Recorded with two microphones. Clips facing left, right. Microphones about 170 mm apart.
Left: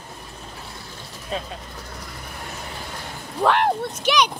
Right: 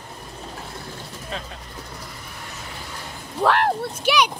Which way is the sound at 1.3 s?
15° left (ahead or behind).